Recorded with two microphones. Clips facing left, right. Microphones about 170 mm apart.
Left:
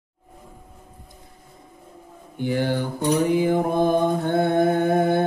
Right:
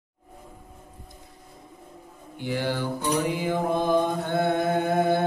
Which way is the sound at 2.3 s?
50° left (ahead or behind).